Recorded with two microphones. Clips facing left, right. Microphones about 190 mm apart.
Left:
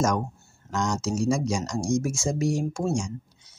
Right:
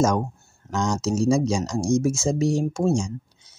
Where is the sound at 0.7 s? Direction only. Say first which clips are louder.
Right 3 dB; 25° right (ahead or behind).